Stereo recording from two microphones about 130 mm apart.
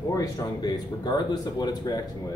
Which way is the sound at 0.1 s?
30° left (ahead or behind).